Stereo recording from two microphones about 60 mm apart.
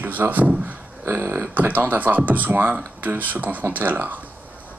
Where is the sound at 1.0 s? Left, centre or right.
Right.